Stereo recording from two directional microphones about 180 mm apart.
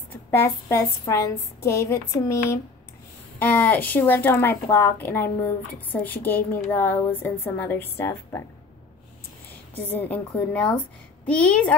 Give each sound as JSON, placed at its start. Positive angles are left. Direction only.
{"t": 0.3, "sound": "a woman's voice", "side_deg": 15}
{"t": 9.8, "sound": "a woman's voice", "side_deg": 10}